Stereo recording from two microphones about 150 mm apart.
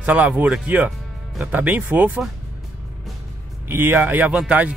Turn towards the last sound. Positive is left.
turn(degrees=-10)  # may be behind; listen again after turning